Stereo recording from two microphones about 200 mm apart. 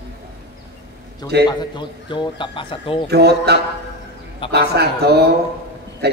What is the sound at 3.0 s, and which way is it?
A man's voice, 55° right (ahead or behind).